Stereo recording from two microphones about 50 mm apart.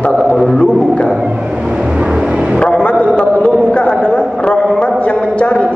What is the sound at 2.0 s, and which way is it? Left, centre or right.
Vehicle, centre.